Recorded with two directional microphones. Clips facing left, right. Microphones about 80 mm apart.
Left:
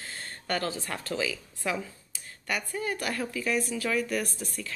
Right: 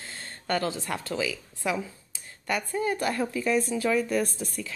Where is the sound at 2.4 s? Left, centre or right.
Right.